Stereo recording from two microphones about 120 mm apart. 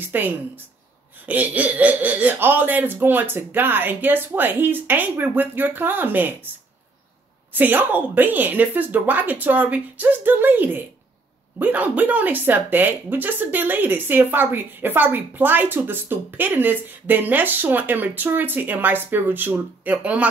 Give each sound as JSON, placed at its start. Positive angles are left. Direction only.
{"t": 0.1, "sound": "speech", "side_deg": -15}
{"t": 7.5, "sound": "speech", "side_deg": -15}